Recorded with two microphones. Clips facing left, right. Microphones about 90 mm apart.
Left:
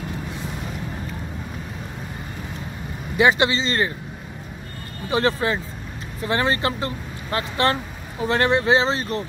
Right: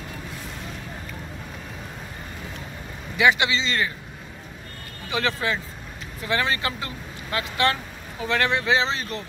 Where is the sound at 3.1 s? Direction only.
35° left (ahead or behind).